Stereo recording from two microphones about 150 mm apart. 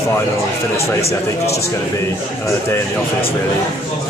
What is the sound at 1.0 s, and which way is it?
Speech, 45° left (ahead or behind).